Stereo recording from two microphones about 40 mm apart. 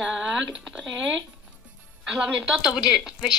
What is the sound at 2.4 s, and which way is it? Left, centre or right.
Speech, centre.